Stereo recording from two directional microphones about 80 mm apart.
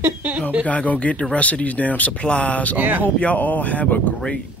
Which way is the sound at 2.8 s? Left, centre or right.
Right.